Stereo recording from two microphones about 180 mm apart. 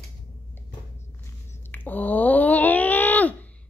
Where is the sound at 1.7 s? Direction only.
10° left (ahead or behind).